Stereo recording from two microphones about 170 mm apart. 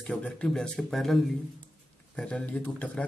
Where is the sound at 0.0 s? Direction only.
5° left (ahead or behind).